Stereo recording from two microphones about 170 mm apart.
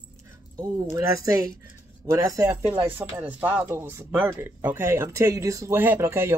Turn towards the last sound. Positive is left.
turn(degrees=-15)  # may be behind; listen again after turning